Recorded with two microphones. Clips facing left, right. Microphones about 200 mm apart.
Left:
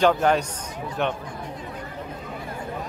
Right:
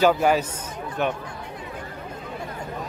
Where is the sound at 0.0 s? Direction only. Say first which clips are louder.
Right 1 dB; 5° right (ahead or behind).